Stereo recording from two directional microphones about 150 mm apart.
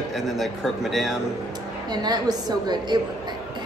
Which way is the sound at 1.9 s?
30° right (ahead or behind).